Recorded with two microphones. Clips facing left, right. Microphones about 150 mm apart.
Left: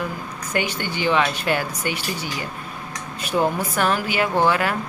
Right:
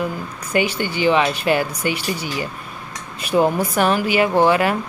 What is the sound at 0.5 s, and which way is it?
Speech, 10° right (ahead or behind).